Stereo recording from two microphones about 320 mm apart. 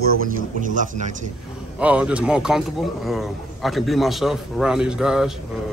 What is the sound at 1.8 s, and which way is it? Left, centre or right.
A man's voice, centre.